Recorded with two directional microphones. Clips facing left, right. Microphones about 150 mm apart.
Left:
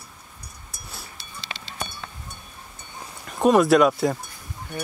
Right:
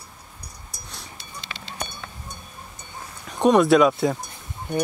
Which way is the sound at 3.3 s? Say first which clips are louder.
Right 1 dB; centre (ahead or behind).